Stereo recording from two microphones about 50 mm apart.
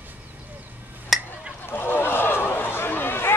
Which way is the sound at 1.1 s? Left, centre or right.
Centre.